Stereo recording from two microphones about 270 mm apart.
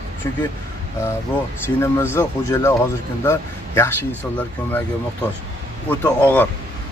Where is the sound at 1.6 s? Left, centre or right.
Centre.